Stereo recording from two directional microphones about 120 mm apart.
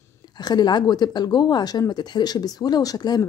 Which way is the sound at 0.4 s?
35° left (ahead or behind).